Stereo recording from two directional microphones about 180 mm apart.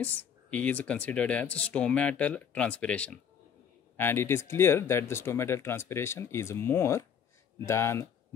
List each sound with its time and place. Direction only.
0.0 s speech: 10° left (ahead or behind)